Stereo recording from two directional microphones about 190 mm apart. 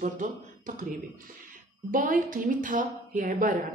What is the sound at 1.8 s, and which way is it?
A woman's voice, 45° right (ahead or behind).